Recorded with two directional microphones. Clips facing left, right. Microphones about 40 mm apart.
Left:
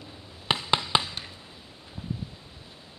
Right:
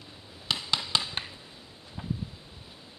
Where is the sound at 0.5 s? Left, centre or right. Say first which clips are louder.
Left 5 dB; left.